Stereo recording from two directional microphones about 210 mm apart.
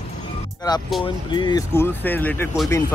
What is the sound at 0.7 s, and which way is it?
Speech, 20° left (ahead or behind).